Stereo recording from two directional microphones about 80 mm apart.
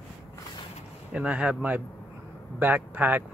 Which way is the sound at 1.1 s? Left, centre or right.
Centre.